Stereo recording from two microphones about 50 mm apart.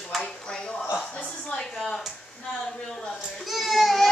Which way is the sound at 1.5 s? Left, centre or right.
Centre.